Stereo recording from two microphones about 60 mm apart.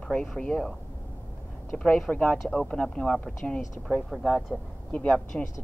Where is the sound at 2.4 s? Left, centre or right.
Centre.